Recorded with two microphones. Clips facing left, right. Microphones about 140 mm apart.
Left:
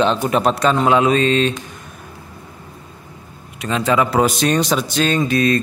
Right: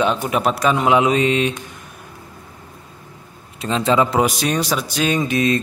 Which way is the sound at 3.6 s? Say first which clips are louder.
Even; 25° right (ahead or behind).